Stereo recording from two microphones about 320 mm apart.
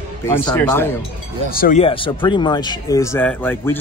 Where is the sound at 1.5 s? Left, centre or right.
Left; by 3.7 s centre.